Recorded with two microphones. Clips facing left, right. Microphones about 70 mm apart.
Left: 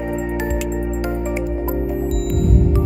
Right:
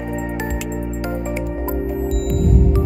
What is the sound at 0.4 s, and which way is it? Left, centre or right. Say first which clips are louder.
Music: left 3 dB; centre.